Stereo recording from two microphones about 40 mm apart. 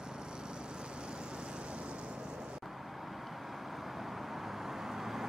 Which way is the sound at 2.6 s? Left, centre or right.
Centre.